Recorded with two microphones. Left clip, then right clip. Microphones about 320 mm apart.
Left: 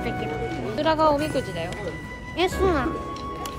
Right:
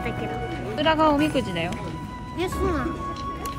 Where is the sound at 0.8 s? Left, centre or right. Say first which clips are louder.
Right 1 dB; centre.